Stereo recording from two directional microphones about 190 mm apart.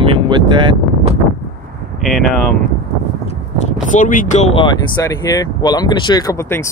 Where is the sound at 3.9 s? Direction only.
45° left (ahead or behind).